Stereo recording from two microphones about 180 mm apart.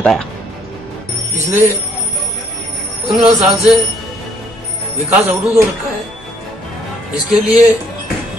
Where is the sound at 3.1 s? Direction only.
Centre (ahead or behind).